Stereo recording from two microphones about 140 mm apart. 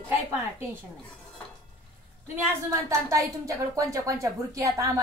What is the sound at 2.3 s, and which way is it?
A woman's voice, 20° right (ahead or behind).